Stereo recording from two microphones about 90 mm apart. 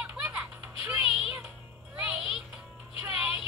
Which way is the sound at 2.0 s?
10° right (ahead or behind).